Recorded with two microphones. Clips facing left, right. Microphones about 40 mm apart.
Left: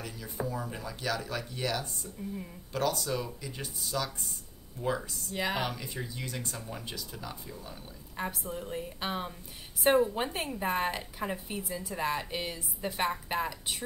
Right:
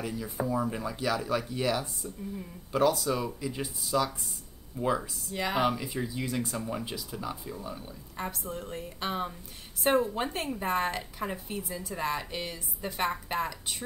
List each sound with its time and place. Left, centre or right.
0.0 s speech: centre
5.3 s a woman's voice: centre
5.6 s a woman's voice: centre